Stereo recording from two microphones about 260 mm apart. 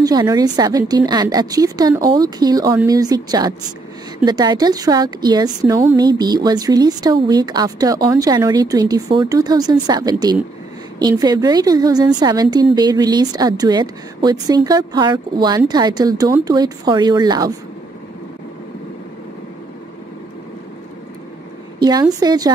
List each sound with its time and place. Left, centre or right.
0.0 s a woman's voice: centre
22.2 s a woman's voice: centre